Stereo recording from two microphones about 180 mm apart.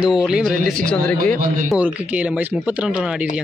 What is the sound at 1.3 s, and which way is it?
Speech, 50° right (ahead or behind).